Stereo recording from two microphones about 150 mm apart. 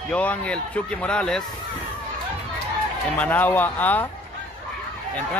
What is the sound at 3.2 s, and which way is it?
Speech, 10° left (ahead or behind).